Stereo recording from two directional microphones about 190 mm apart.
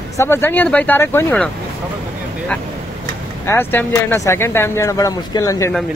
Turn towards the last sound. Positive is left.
turn(degrees=20)  # may be behind; listen again after turning